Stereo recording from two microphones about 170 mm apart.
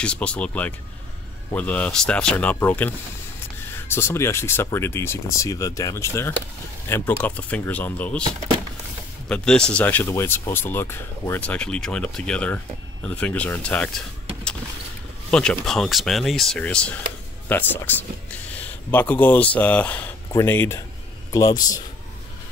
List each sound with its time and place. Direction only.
0.0 s speech: 5° left (ahead or behind)
9.3 s speech: 5° left (ahead or behind)
15.3 s a man's voice: 5° left (ahead or behind); by 21.7 s 20° left (ahead or behind)